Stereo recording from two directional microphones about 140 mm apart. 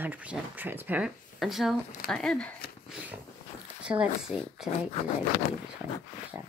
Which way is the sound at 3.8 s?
5° right (ahead or behind).